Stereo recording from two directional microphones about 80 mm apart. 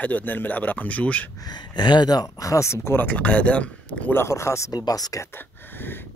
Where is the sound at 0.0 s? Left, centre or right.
Left.